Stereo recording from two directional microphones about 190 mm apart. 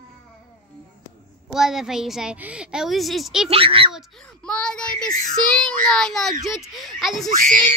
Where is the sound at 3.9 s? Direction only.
Centre (ahead or behind).